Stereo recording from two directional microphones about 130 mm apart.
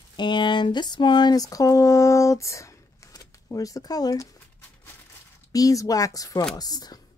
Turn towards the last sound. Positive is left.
turn(degrees=30)  # may be behind; listen again after turning